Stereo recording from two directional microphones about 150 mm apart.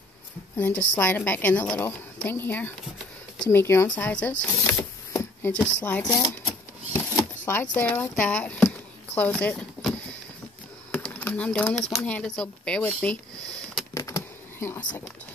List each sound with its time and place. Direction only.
0.6 s a woman's voice: 10° left (ahead or behind)
4.4 s a sound: 15° left (ahead or behind)
5.8 s a woman's voice: 10° left (ahead or behind)
6.0 s speech: 20° left (ahead or behind)
6.9 s shuffling cards: 15° left (ahead or behind)
7.7 s a woman's voice: 15° left (ahead or behind)
11.1 s speech: 10° left (ahead or behind)
13.9 s a sound: 20° left (ahead or behind)